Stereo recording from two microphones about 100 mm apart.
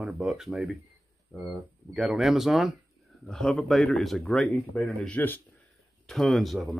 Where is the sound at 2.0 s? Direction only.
Centre (ahead or behind); by 5.4 s 15° left (ahead or behind).